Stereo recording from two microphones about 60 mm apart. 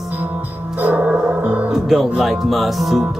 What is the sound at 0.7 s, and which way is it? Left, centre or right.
Gong, right.